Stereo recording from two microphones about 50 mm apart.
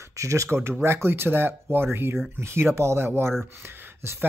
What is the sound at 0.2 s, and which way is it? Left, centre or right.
Speech, right.